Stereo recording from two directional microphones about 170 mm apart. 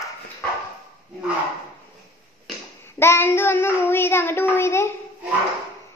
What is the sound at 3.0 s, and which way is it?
Child singing, 15° left (ahead or behind).